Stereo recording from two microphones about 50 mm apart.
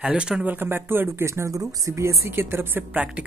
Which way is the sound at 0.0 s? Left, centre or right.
Right.